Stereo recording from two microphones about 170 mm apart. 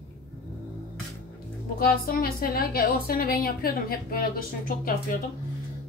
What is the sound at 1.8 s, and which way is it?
A woman's voice, 60° left (ahead or behind).